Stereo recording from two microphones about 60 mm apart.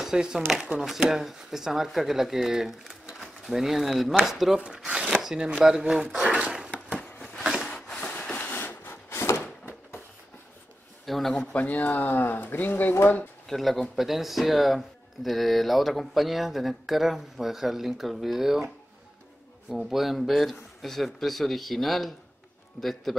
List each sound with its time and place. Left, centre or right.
0.0 s speech: centre
4.9 s chopping: centre
5.2 s speech: centre
7.7 s wood: left
8.5 s wood: left
11.1 s speech: centre
11.5 s speech: left
13.5 s speech: centre
19.7 s speech: centre